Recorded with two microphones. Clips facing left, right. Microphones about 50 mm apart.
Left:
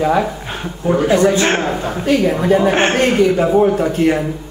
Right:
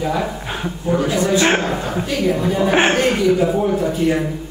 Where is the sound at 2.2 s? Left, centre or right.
Left.